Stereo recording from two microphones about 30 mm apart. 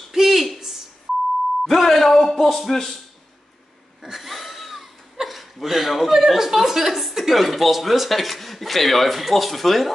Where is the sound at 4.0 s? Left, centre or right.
Centre.